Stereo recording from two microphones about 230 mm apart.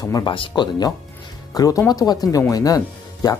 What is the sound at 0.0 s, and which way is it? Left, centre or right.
Speech, centre.